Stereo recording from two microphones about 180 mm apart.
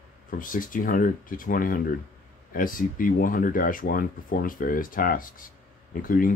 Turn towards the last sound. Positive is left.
turn(degrees=50)  # may be behind; listen again after turning